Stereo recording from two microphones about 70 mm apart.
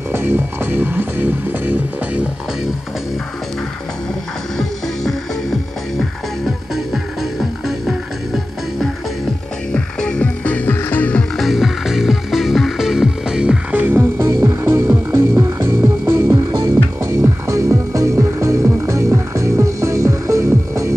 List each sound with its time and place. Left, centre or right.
0.1 s music: right
4.6 s music: centre
9.7 s music: centre
11.3 s music: centre
13.7 s music: right
16.4 s music: right